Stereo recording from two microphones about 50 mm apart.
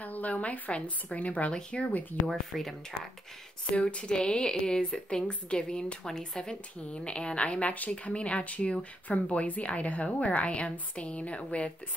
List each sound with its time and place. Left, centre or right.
0.0 s a woman's voice: left
2.2 s speech: centre
3.7 s speech: left